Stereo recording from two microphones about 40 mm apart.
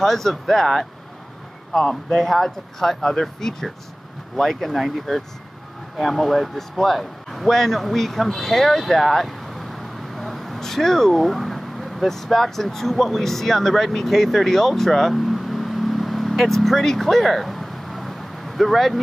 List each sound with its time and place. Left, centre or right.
0.0 s speech: centre
1.7 s speech: centre
2.2 s speech: centre